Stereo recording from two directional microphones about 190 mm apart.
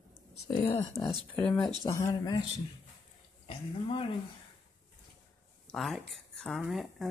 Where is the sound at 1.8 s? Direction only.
20° left (ahead or behind).